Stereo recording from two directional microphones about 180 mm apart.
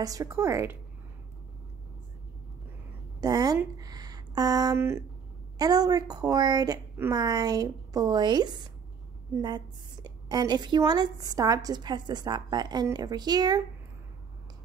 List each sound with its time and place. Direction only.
0.0 s a woman's voice: 20° right (ahead or behind)
3.2 s a woman's voice: 20° right (ahead or behind)
10.0 s a woman's voice: 20° right (ahead or behind)